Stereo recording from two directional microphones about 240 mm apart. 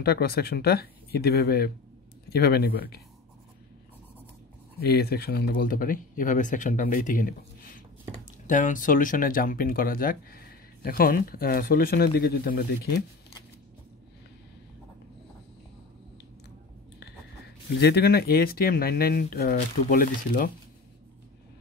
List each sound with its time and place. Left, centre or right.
0.0 s speech: left
4.8 s speech: left
17.7 s speech: left